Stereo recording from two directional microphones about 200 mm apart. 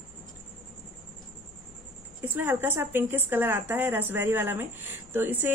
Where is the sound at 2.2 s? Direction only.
10° right (ahead or behind).